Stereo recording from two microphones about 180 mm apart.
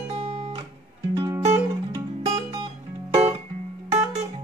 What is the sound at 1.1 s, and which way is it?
Music, 15° right (ahead or behind).